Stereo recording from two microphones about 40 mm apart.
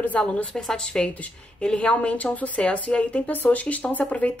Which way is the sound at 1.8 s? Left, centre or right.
Left.